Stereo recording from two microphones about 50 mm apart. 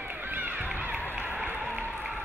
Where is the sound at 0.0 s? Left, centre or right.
Right.